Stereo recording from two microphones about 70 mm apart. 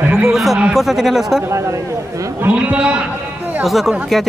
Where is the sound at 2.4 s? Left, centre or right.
Right.